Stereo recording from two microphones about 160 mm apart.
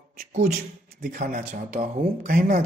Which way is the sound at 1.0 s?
65° right (ahead or behind).